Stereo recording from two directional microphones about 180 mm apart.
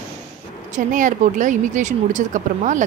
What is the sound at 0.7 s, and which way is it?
Speech, 45° right (ahead or behind).